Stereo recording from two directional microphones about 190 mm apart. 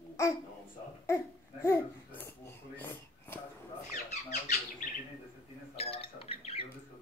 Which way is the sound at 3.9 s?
50° left (ahead or behind).